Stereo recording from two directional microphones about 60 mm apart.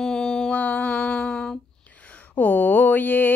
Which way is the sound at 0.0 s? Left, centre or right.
Centre.